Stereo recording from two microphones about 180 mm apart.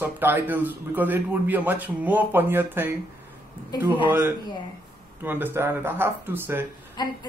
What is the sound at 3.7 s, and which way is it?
Speech, 25° left (ahead or behind).